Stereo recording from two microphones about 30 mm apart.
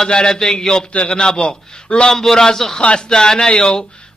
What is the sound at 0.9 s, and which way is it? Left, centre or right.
A man's voice, left.